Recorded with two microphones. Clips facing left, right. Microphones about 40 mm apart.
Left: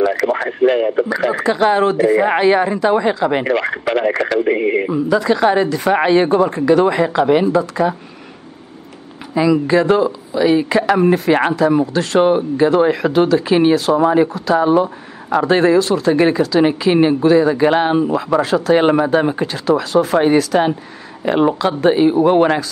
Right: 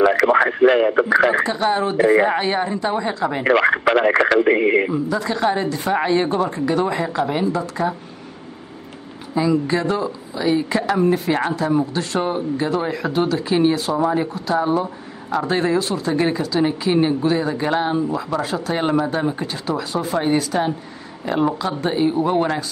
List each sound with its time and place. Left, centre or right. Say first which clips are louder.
0.0 s speech: right 2 dB; right
1.4 s speech: left 5 dB; left
2.0 s speech: left 1 dB; right
2.2 s speech: left 6 dB; left
3.4 s speech: right 2 dB; centre
4.9 s speech: left 6 dB; left
9.3 s speech: left 5 dB; left